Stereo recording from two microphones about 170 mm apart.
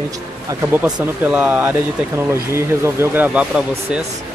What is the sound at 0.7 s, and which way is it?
Speech, 10° right (ahead or behind).